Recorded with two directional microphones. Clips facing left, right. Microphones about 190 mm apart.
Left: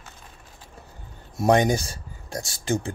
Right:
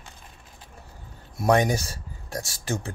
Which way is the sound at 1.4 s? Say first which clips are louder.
Left 2 dB; 30° left (ahead or behind).